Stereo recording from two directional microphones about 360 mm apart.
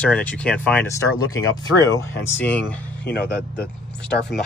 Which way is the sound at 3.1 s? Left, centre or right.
Left.